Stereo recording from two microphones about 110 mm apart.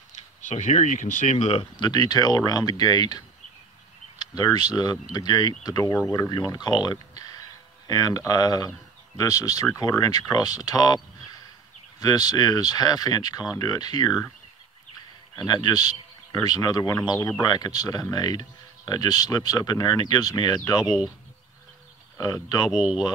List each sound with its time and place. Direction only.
0.1 s a sound: 90° left
1.2 s speech: 80° left
1.6 s speech: 40° left (ahead or behind)
12.0 s speech: 35° left (ahead or behind)
15.3 s speech: 40° left (ahead or behind)
20.8 s speech: 5° right (ahead or behind)
22.1 s speech: 30° left (ahead or behind)
22.7 s speech: 5° right (ahead or behind)